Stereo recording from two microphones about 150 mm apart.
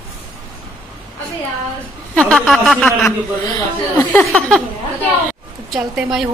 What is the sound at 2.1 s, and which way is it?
A woman's voice, 10° left (ahead or behind).